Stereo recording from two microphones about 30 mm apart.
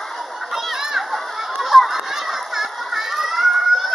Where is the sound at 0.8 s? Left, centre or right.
Centre.